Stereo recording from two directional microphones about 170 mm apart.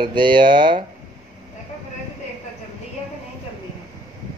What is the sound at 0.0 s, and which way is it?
Speech, 30° right (ahead or behind).